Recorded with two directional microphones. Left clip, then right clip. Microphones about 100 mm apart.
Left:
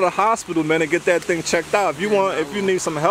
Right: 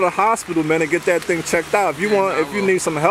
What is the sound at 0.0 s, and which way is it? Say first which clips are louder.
Speech: right 1 dB; 20° left (ahead or behind).